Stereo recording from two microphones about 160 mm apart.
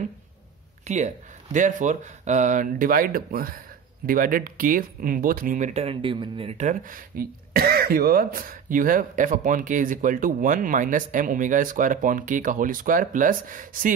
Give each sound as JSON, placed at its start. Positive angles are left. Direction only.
{"t": 0.8, "sound": "speech", "side_deg": -45}